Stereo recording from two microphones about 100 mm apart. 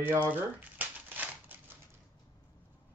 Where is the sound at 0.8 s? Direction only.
15° right (ahead or behind).